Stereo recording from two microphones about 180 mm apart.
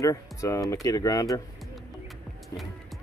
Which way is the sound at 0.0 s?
15° left (ahead or behind).